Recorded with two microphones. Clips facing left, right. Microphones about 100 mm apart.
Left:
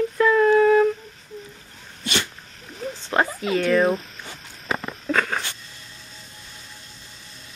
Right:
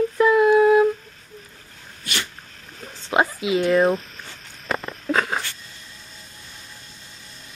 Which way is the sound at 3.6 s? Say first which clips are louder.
Right 1 dB; 5° right (ahead or behind).